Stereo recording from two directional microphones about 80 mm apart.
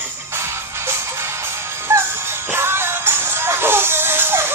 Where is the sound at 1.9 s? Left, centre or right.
Right.